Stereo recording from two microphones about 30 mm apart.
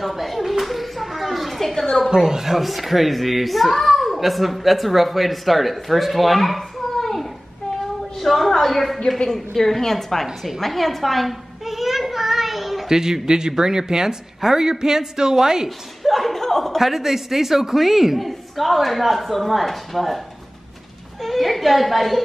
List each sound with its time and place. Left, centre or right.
0.0 s a sound: centre
2.0 s speech: right
2.5 s a woman's voice: centre
8.2 s a sound: centre
9.2 s a woman's voice: left
9.6 s a woman's voice: centre
10.2 s a woman's voice: centre
10.6 s a sound: centre
12.8 s speech: centre
16.0 s chuckle: centre
16.7 s a woman's voice: centre
21.2 s a woman's voice: centre